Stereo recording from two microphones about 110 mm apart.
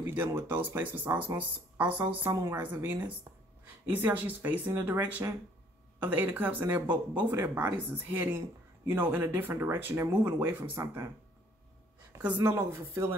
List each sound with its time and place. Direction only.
0.0 s speech: 20° right (ahead or behind)
12.1 s a sound: 25° right (ahead or behind)
12.4 s speech: 25° right (ahead or behind)